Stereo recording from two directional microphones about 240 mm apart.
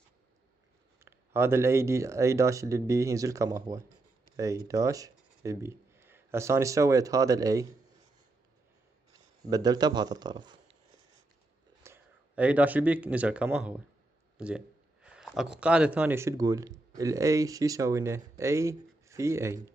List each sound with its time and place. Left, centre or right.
1.0 s speech: centre
9.1 s a man's voice: centre
11.8 s speech: centre